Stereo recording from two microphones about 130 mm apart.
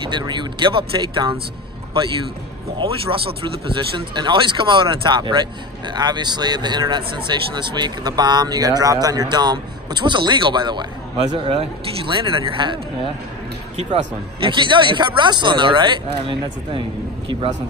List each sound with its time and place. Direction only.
0.0 s speech: 35° right (ahead or behind)
2.8 s speech: 40° right (ahead or behind)
11.3 s a man's voice: 45° right (ahead or behind)
14.4 s speech: 40° right (ahead or behind)